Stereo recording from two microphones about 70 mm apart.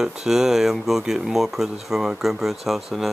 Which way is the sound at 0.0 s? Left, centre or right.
Centre.